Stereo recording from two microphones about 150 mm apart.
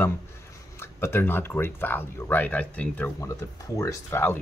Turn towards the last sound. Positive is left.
turn(degrees=15)  # may be behind; listen again after turning